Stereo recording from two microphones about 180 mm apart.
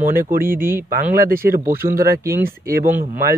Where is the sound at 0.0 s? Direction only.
50° right (ahead or behind).